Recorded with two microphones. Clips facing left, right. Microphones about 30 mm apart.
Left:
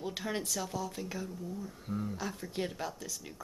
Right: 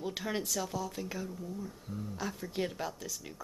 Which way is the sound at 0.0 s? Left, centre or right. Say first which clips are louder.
Right 1 dB; centre.